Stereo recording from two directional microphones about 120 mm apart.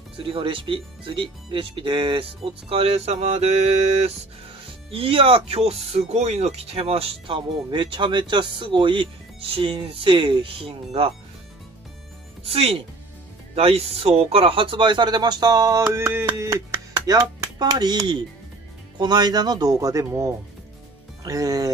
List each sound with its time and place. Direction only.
0.2 s speech: 45° right (ahead or behind); by 4.1 s 65° right (ahead or behind)
4.9 s speech: 50° right (ahead or behind)
12.4 s speech: 55° right (ahead or behind); by 15.8 s 30° right (ahead or behind)
15.9 s music: 20° right (ahead or behind); by 18.2 s 35° right (ahead or behind)
18.9 s speech: 35° right (ahead or behind)